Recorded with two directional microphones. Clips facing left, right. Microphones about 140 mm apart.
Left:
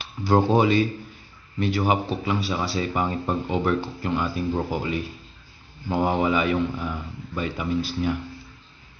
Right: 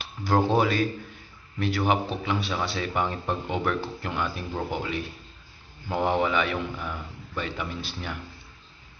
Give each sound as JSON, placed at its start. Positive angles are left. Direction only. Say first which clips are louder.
{"t": 0.4, "sound": "a man's voice", "louder": "left 3 dB", "side_deg": 0}